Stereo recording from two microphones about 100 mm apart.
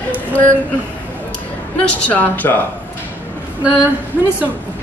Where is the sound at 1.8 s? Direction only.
15° left (ahead or behind).